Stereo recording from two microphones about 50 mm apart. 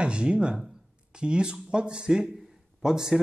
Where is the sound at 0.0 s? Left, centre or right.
Centre.